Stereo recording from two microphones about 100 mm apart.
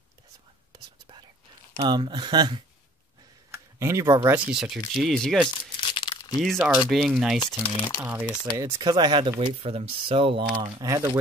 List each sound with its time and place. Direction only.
1.8 s speech: 50° right (ahead or behind)
3.5 s speech: 30° right (ahead or behind)
4.5 s speech: 5° right (ahead or behind)
5.8 s crumpling: 50° left (ahead or behind)
6.4 s speech: centre (ahead or behind)
7.6 s speech: 50° left (ahead or behind)
8.0 s speech: 15° right (ahead or behind)
8.5 s speech: 30° right (ahead or behind)
8.9 s speech: 50° right (ahead or behind)
9.4 s speech: 70° right (ahead or behind)
10.8 s speech: 35° right (ahead or behind)